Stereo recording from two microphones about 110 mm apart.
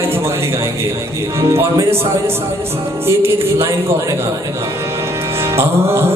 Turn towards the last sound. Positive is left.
turn(degrees=-25)  # may be behind; listen again after turning